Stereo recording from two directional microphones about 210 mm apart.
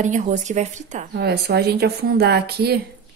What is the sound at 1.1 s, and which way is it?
Speech, 50° right (ahead or behind).